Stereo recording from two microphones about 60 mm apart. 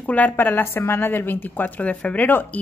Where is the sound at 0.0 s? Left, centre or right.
Left.